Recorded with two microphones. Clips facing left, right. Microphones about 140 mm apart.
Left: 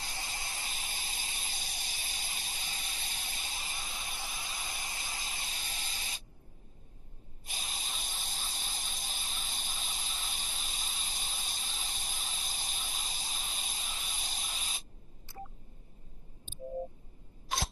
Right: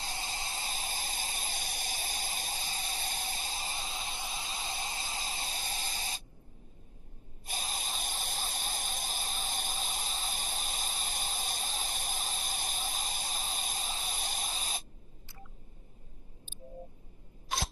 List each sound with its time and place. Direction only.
0.0 s spray: 25° right (ahead or behind)
7.4 s spray: 45° right (ahead or behind)
14.5 s static: 45° right (ahead or behind)
17.5 s scissors: centre (ahead or behind)